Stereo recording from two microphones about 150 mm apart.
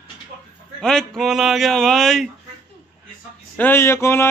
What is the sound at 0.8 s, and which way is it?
Speech, 5° left (ahead or behind).